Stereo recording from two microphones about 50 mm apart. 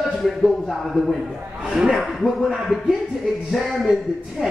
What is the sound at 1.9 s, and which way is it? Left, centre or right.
Music, centre.